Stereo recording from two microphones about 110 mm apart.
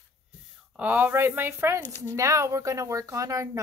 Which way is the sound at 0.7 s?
15° right (ahead or behind).